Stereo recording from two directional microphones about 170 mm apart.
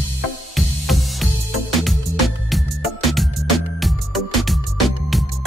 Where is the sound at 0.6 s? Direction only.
Centre (ahead or behind).